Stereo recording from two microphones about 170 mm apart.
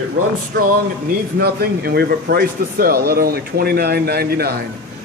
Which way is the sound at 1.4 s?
65° right (ahead or behind).